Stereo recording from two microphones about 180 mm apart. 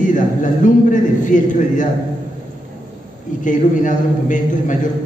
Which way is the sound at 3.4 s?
45° left (ahead or behind).